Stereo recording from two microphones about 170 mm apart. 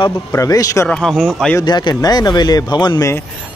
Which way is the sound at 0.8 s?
5° left (ahead or behind).